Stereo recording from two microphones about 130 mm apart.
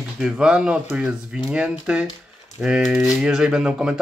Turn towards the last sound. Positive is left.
turn(degrees=-5)  # may be behind; listen again after turning